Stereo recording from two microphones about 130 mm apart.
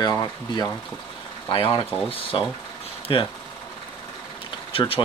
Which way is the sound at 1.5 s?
40° left (ahead or behind).